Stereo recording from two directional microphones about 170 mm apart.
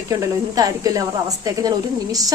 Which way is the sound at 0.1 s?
20° right (ahead or behind).